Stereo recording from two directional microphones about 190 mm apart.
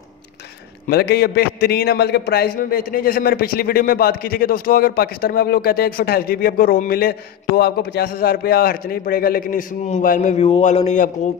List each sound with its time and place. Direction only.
0.8 s a man's voice: 55° left (ahead or behind); by 11.1 s 35° left (ahead or behind)